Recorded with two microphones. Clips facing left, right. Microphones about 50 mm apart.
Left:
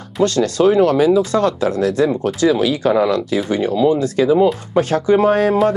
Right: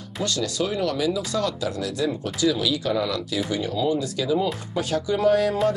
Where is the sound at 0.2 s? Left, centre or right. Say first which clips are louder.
Left 12 dB; left.